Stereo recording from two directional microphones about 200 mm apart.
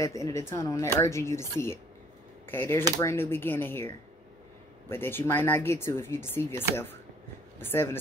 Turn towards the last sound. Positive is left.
turn(degrees=10)  # may be behind; listen again after turning